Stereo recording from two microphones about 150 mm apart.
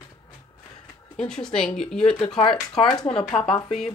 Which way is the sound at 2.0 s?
40° left (ahead or behind).